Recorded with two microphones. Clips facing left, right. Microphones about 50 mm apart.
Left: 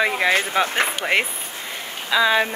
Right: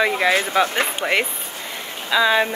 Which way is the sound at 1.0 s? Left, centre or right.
Centre.